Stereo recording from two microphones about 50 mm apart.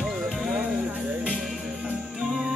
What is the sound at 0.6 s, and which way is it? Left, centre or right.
Music, right.